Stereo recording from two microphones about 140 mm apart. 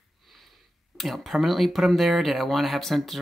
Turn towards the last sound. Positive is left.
turn(degrees=0)  # may be behind; listen again after turning